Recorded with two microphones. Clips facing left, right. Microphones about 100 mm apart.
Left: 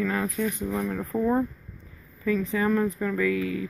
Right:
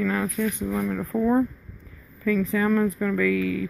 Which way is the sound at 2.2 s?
30° left (ahead or behind).